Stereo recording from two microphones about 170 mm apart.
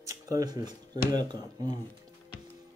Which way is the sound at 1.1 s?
25° right (ahead or behind).